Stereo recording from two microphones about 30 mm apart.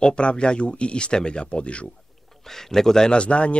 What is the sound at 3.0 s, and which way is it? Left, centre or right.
Speech, left.